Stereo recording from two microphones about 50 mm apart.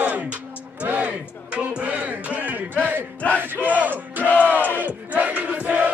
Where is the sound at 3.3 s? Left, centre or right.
Right.